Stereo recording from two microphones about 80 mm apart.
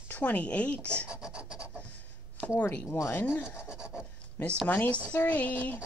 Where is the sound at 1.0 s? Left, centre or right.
Centre.